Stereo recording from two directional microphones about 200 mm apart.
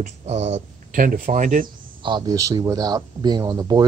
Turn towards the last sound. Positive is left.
turn(degrees=-20)  # may be behind; listen again after turning